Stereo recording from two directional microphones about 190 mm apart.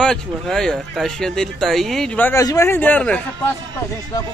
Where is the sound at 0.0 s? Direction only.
5° left (ahead or behind).